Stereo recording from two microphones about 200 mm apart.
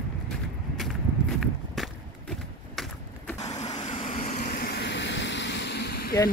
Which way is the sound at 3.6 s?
35° left (ahead or behind).